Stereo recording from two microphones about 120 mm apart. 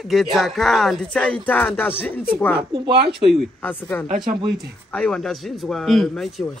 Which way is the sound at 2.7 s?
45° right (ahead or behind).